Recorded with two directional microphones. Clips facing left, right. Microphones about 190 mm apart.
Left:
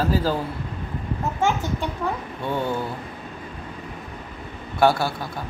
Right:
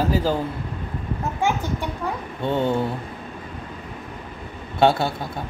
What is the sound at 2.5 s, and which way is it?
Speech, 25° right (ahead or behind).